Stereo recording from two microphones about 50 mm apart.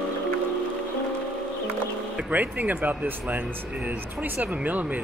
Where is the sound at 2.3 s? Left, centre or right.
Right.